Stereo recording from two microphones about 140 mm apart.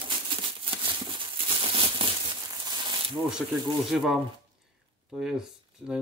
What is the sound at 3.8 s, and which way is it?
Speech, centre (ahead or behind).